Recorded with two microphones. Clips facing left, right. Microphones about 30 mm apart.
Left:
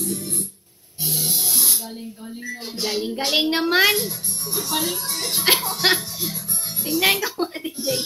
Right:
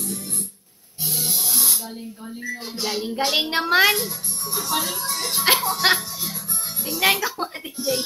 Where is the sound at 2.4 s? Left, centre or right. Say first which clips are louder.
Even; left.